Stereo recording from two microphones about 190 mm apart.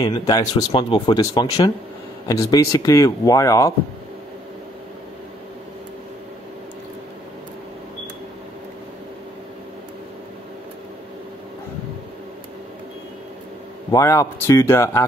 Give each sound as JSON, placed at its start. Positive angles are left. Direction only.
{"t": 0.0, "sound": "speech", "side_deg": 20}
{"t": 13.9, "sound": "speech", "side_deg": 15}